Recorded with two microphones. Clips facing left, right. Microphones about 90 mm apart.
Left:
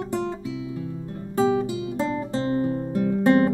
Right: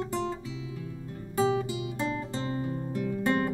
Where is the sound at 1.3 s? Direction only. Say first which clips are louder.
Left 5 dB; 30° left (ahead or behind).